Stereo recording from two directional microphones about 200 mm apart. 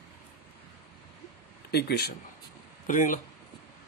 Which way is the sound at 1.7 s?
55° left (ahead or behind).